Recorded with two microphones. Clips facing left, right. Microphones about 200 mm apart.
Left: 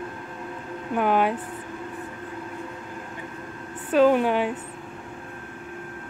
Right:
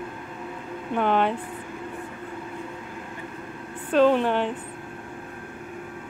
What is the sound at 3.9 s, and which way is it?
Speech, 5° left (ahead or behind).